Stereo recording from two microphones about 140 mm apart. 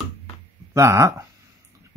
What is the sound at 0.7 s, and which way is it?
Speech, 20° right (ahead or behind).